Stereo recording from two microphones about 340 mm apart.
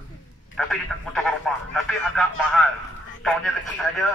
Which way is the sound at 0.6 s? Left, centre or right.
Centre.